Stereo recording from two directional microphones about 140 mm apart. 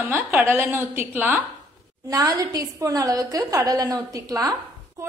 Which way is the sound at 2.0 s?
25° right (ahead or behind).